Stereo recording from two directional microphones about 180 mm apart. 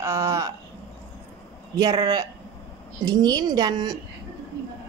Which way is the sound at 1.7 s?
20° right (ahead or behind).